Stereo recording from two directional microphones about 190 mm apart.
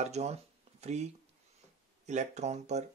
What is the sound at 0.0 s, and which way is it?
Speech, 35° right (ahead or behind).